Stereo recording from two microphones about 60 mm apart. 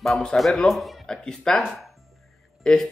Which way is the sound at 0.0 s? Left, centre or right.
Centre.